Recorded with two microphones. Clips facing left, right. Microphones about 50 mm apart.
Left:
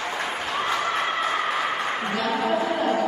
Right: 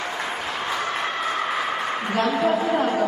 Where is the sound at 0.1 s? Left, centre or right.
Centre.